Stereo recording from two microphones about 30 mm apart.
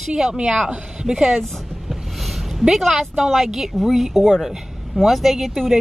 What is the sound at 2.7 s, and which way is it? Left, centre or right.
Speech, centre.